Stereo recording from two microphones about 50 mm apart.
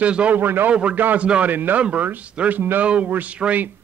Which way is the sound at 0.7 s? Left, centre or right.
Right.